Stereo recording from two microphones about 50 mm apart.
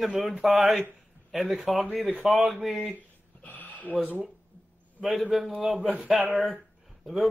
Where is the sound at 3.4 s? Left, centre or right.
Left.